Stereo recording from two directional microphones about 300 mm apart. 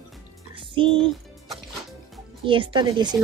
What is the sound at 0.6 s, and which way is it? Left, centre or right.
Music, centre.